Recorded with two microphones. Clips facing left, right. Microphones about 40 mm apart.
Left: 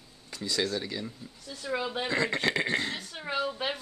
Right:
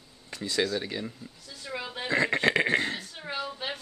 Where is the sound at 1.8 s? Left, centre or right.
Left.